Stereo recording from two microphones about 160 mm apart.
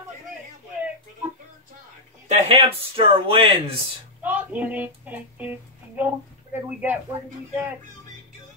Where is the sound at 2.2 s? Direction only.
40° right (ahead or behind).